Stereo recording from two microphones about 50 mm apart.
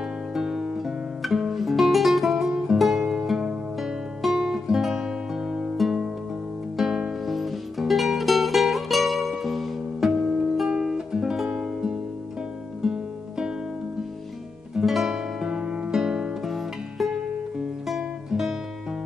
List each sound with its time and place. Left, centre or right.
0.3 s guitar: centre
5.8 s music: centre
10.7 s music: centre
14.8 s music: centre
15.0 s music: centre
15.9 s music: centre